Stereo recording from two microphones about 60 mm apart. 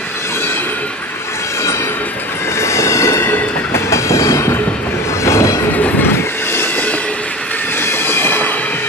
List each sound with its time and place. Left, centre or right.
2.6 s train: left
5.7 s train: left
6.1 s train: left
7.8 s train: left